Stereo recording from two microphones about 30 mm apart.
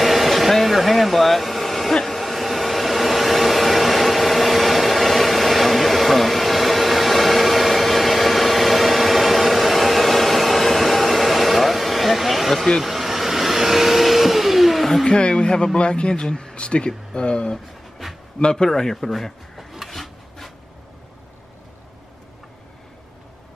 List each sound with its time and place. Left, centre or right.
0.0 s vehicle: centre
2.0 s a sound: centre
12.8 s vehicle: centre
15.0 s a man's voice: left; by 19.6 s centre
19.9 s rub: centre